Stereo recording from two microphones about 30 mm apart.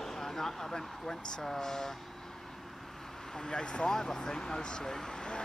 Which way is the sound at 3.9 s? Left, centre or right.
Centre.